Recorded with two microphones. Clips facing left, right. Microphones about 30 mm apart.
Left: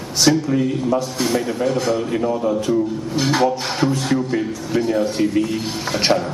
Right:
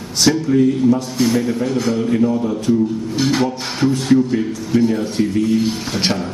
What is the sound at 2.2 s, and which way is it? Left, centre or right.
Speech, left.